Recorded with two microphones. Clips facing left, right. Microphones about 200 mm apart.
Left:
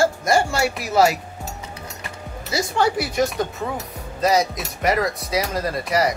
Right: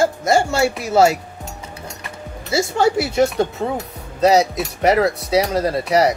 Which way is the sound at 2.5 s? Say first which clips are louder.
Right 4 dB; 25° right (ahead or behind).